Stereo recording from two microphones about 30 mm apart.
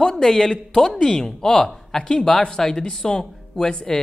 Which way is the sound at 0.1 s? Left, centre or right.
Centre.